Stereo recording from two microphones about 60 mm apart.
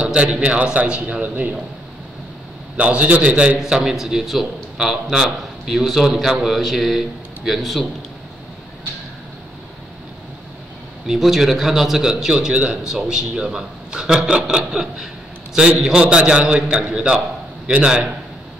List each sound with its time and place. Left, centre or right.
0.0 s a man's voice: centre
2.8 s a man's voice: right
3.5 s a man's voice: centre
11.1 s speech: centre